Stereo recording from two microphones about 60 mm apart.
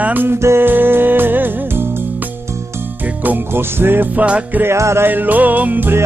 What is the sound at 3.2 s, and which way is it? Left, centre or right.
Music, right.